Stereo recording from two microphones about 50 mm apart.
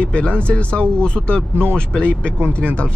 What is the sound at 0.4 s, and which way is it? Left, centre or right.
Speech, left.